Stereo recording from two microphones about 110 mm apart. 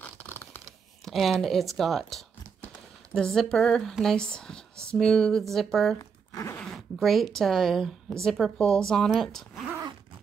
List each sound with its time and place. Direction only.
0.0 s scratch: 15° left (ahead or behind)
1.0 s speech: centre (ahead or behind)
5.9 s crumpling: 30° left (ahead or behind)
6.6 s speech: centre (ahead or behind)